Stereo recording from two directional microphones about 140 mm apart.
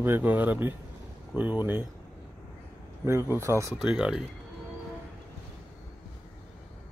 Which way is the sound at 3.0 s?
15° right (ahead or behind).